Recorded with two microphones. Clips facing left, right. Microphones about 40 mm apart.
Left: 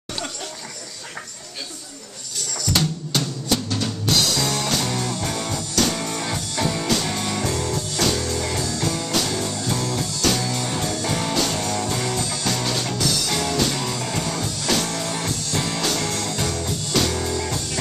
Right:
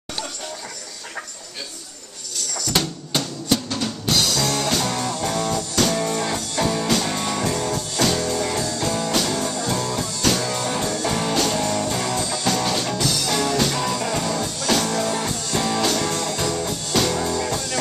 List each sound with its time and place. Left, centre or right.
2.8 s drum: centre
3.2 s music: centre
16.9 s music: centre